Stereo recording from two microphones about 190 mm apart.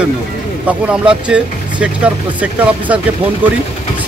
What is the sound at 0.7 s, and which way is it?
Speech, 5° right (ahead or behind).